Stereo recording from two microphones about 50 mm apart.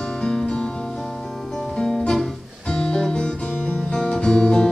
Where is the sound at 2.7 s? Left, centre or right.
Centre.